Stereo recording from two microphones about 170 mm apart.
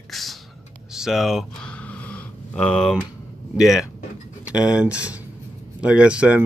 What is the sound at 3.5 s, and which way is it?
Speech, centre (ahead or behind).